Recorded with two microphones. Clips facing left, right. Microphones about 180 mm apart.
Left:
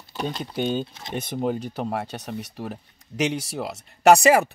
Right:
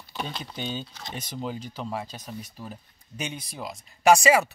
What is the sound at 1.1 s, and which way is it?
Speech, 55° left (ahead or behind).